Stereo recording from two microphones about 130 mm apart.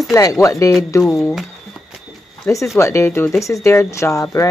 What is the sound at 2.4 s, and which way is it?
Speech, 25° left (ahead or behind).